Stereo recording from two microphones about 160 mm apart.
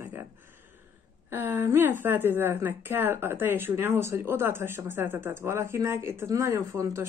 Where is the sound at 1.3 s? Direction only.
15° right (ahead or behind).